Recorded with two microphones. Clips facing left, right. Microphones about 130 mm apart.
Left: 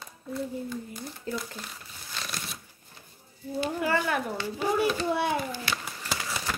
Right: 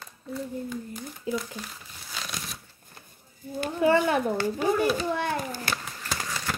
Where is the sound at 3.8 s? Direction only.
25° right (ahead or behind).